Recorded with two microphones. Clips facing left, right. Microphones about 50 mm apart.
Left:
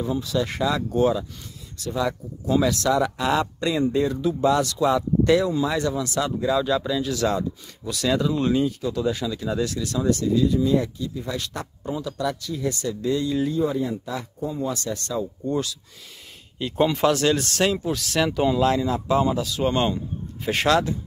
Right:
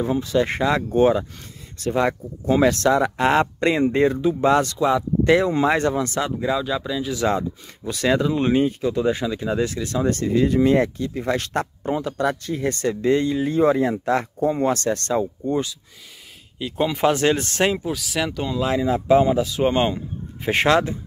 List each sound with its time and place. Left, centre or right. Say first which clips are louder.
0.0 s speech: right 4 dB; right
4.7 s speech: right 1 dB; centre
5.3 s speech: right 4 dB; right
6.2 s speech: even; right
6.6 s speech: left 2 dB; centre
7.2 s speech: right 2 dB; right
13.5 s speech: right 6 dB; right
15.5 s speech: right 2 dB; right
16.5 s speech: left 1 dB; centre
17.0 s speech: right 1 dB; right
17.8 s speech: left 1 dB; centre
18.3 s speech: left 5 dB; centre
18.6 s speech: right 2 dB; centre
18.9 s speech: right 5 dB; right